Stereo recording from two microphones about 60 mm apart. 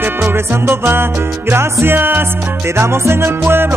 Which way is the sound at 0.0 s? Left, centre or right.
Right.